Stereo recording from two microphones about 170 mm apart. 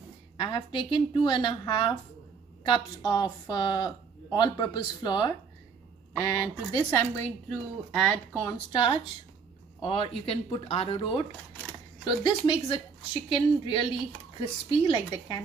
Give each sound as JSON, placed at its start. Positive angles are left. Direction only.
{"t": 0.4, "sound": "speech", "side_deg": 25}
{"t": 7.4, "sound": "speech", "side_deg": 0}
{"t": 8.4, "sound": "speech", "side_deg": 20}
{"t": 9.8, "sound": "speech", "side_deg": 30}